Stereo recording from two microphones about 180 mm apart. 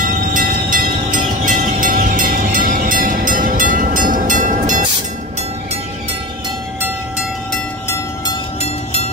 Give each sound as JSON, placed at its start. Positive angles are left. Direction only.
{"t": 0.3, "sound": "train", "side_deg": -50}